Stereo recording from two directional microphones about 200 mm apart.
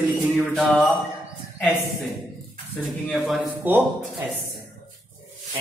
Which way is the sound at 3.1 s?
Centre (ahead or behind).